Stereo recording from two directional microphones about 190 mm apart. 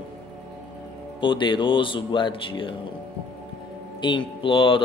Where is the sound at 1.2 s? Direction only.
25° left (ahead or behind).